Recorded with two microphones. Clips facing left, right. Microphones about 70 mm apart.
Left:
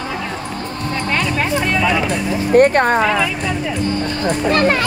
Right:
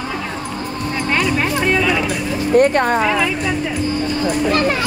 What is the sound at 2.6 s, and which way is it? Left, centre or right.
Speech, left.